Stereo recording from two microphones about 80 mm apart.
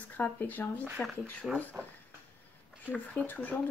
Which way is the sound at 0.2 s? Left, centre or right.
Left.